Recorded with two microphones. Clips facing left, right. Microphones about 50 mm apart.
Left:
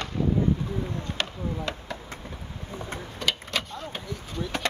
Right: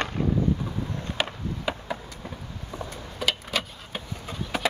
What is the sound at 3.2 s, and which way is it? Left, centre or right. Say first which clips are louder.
Vehicle: right 2 dB; centre.